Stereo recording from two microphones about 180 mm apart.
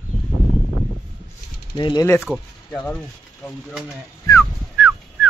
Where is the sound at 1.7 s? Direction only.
25° left (ahead or behind).